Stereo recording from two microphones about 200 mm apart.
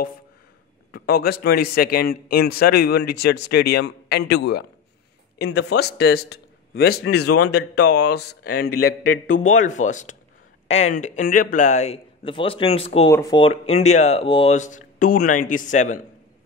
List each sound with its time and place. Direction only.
0.9 s a man's voice: 50° left (ahead or behind)
5.5 s a man's voice: 90° left
5.8 s a man's voice: 55° left (ahead or behind)
8.6 s a man's voice: 90° left
9.3 s speech: 40° left (ahead or behind)
13.1 s speech: 20° left (ahead or behind); by 16.0 s 40° left (ahead or behind)